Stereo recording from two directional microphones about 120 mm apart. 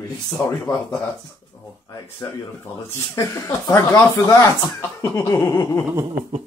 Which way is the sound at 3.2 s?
25° left (ahead or behind).